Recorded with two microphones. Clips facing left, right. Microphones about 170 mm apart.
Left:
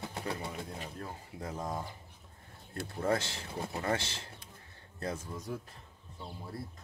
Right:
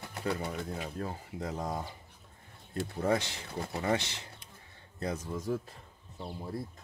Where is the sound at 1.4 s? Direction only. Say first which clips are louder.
Right 2 dB; 20° right (ahead or behind).